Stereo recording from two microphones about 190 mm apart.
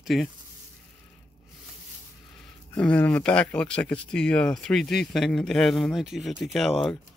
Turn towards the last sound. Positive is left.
turn(degrees=0)  # may be behind; listen again after turning